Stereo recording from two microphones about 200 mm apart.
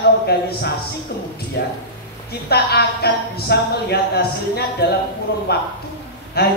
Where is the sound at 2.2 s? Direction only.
55° left (ahead or behind).